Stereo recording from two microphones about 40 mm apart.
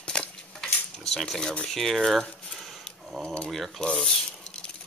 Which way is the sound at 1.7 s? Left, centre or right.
Centre.